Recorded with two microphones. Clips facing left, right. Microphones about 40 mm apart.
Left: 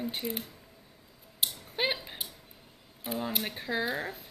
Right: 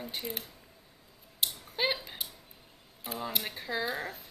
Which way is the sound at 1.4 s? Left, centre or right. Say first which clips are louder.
Even; centre.